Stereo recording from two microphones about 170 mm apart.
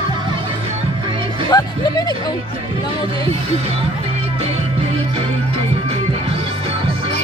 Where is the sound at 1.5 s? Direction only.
25° left (ahead or behind).